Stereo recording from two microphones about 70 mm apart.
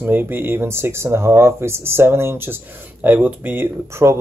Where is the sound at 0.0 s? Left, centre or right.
Right.